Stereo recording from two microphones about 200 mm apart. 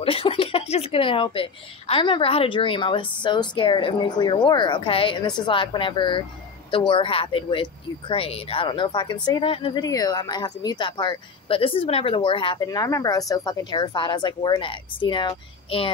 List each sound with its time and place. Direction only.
0.0 s speech: 30° left (ahead or behind)